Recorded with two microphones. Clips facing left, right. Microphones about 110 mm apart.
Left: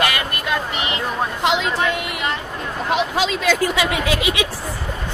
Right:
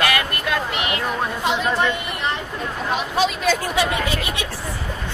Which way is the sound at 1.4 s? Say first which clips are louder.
Left 1 dB; 90° left.